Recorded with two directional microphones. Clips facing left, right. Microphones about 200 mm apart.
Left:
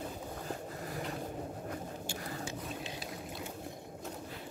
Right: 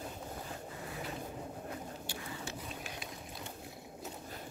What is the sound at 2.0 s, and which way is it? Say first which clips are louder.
Boat: left 3 dB; 45° left (ahead or behind).